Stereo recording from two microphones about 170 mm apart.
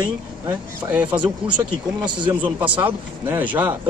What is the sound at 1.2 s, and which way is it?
Speech, 25° right (ahead or behind).